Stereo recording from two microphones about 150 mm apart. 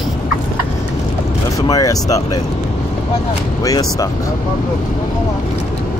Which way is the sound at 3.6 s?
25° left (ahead or behind).